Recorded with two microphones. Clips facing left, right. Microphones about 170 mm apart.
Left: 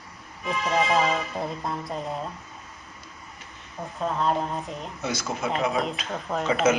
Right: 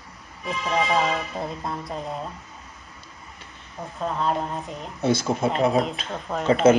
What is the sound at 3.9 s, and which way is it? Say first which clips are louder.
Speech: even; centre (ahead or behind).